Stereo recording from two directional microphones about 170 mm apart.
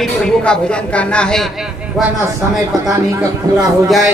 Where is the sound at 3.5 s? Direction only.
25° right (ahead or behind).